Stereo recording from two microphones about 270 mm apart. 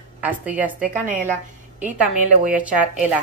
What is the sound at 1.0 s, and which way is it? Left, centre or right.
Speech, right.